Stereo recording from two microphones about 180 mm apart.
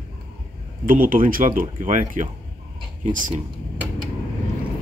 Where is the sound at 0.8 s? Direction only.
50° right (ahead or behind).